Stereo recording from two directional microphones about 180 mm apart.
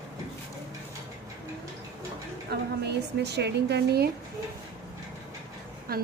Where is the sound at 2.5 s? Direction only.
65° right (ahead or behind).